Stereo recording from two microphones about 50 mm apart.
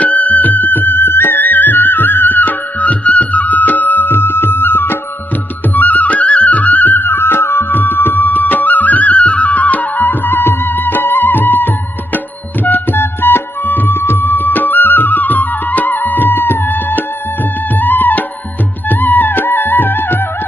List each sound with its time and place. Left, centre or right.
0.0 s music: left
5.8 s music: left